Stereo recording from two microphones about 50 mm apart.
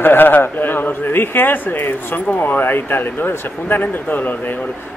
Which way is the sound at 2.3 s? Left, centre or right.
Left.